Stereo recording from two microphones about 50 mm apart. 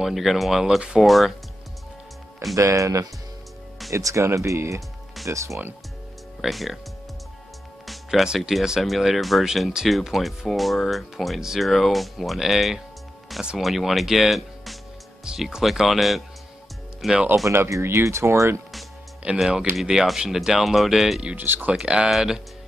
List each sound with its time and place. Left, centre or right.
0.0 s speech: centre
1.0 s speech: centre
2.5 s speech: right
6.5 s speech: centre
7.8 s music: centre
8.8 s speech: centre
17.5 s speech: right
19.3 s speech: centre
21.4 s speech: right
21.7 s speech: centre